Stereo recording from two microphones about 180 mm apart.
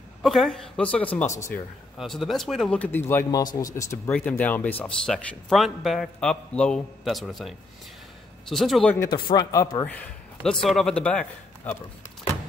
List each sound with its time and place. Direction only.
0.2 s a man's voice: centre (ahead or behind)
1.2 s speech: 40° left (ahead or behind)
2.0 s a man's voice: centre (ahead or behind)
9.0 s speech: 25° left (ahead or behind)
9.8 s a man's voice: 5° left (ahead or behind)